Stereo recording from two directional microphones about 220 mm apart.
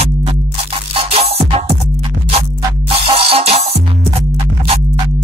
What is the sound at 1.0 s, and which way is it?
Music, 25° right (ahead or behind).